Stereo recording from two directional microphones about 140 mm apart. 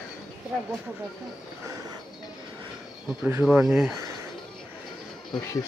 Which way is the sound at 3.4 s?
5° right (ahead or behind).